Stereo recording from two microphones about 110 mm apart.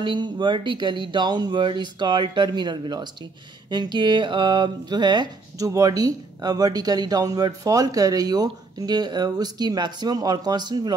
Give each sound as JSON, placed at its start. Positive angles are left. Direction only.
{"t": 0.0, "sound": "speech", "side_deg": -45}